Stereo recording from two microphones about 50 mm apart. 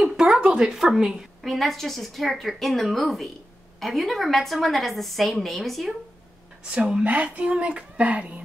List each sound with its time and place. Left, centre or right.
0.0 s a sound: centre
0.7 s speech: centre
1.4 s a woman's voice: centre
6.7 s speech: right